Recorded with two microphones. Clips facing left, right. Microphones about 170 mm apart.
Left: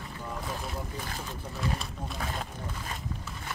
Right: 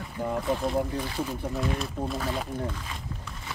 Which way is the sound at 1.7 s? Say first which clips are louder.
Right 7 dB; centre (ahead or behind).